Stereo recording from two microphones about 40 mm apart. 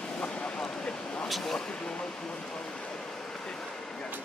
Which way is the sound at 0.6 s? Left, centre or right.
Centre.